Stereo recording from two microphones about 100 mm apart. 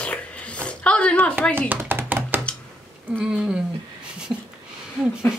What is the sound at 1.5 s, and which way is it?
Chopping, 20° right (ahead or behind).